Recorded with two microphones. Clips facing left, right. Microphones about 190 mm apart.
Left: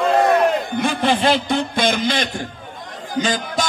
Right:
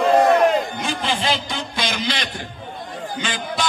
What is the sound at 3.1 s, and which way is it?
Speech, 40° left (ahead or behind).